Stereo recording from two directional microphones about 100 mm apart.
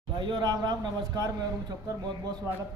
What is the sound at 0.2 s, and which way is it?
A man's voice, 45° right (ahead or behind).